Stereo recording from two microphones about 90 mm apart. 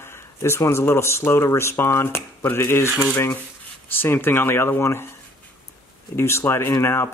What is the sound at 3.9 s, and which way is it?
Speech, 25° left (ahead or behind).